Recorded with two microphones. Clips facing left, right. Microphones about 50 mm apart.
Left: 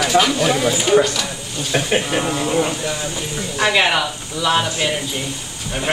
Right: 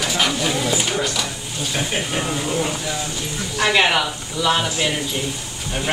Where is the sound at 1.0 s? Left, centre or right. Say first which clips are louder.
Left 2 dB; centre.